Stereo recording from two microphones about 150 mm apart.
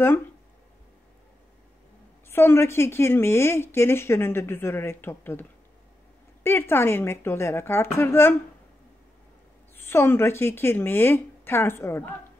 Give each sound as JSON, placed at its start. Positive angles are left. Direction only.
{"t": 2.2, "sound": "a woman's voice", "side_deg": 15}
{"t": 9.8, "sound": "a woman's voice", "side_deg": 15}